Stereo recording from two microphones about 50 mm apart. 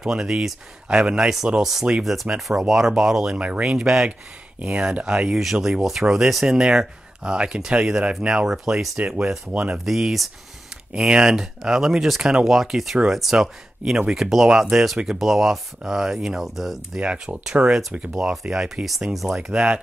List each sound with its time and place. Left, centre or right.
0.0 s speech: centre
2.3 s speech: right
2.6 s speech: centre
3.3 s speech: right
3.6 s speech: centre; by 9.8 s right
9.8 s speech: centre
17.0 s speech: right
18.3 s speech: centre